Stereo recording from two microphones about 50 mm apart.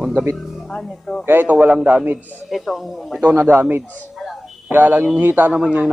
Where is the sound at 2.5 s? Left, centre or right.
Centre.